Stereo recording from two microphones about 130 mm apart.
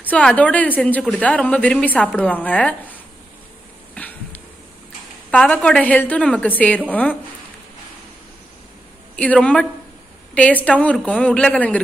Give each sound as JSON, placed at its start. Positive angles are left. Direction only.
{"t": 0.1, "sound": "a woman's voice", "side_deg": 10}
{"t": 4.0, "sound": "a sound", "side_deg": 10}
{"t": 5.3, "sound": "a woman's voice", "side_deg": 10}
{"t": 9.1, "sound": "a woman's voice", "side_deg": 10}